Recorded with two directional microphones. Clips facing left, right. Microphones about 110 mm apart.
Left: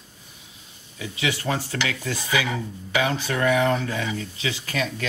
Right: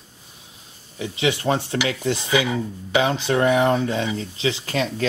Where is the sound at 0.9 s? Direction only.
25° right (ahead or behind).